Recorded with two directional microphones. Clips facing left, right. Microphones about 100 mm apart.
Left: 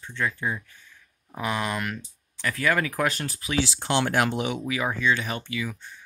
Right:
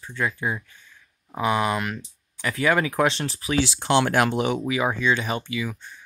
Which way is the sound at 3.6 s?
70° right (ahead or behind).